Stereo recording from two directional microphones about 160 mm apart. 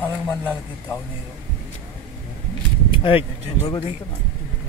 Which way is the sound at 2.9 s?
35° left (ahead or behind).